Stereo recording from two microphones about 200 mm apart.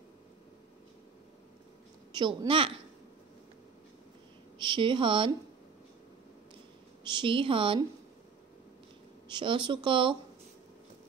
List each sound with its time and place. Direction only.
2.1 s speech: 25° right (ahead or behind)
4.6 s speech: 25° right (ahead or behind)
7.2 s speech: 25° right (ahead or behind)
9.3 s speech: 25° right (ahead or behind)